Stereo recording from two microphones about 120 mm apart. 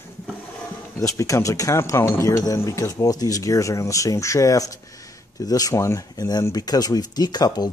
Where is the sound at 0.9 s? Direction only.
25° left (ahead or behind).